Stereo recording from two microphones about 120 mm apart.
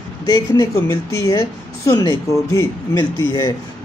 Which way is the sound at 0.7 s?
25° left (ahead or behind).